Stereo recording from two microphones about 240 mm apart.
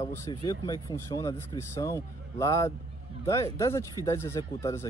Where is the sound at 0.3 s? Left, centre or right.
Centre.